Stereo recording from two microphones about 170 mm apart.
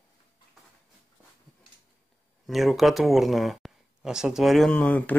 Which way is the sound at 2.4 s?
Centre (ahead or behind).